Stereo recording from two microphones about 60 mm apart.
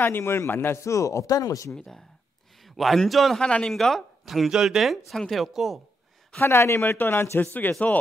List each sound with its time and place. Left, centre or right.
0.0 s speech: left
1.7 s a man's voice: centre
3.3 s speech: centre
3.7 s speech: centre
6.4 s speech: left
7.0 s a man's voice: left